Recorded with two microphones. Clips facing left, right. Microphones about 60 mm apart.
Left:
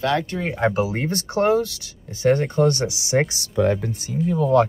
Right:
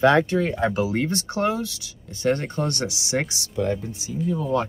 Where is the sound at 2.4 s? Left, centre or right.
Left.